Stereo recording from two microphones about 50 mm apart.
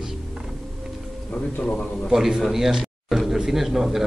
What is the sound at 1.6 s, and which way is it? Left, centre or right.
Speech, left.